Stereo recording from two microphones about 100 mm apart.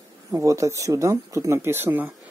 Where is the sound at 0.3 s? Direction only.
30° right (ahead or behind).